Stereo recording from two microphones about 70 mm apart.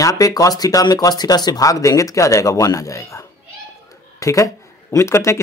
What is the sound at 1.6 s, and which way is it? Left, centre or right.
Speech, left.